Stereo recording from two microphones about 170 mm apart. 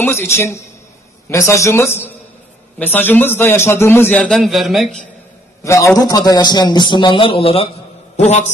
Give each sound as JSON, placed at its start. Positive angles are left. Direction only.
{"t": 0.0, "sound": "a man's voice", "side_deg": 10}
{"t": 5.6, "sound": "a man's voice", "side_deg": 15}